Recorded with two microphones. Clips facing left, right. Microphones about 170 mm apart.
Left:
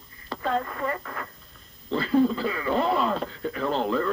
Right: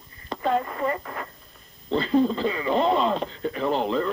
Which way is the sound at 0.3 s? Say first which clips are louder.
Right 3 dB; 15° right (ahead or behind).